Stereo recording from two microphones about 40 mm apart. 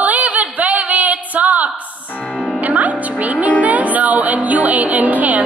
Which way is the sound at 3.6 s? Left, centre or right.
Right.